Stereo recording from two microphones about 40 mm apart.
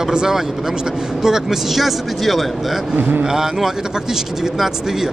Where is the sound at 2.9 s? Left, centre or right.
Right.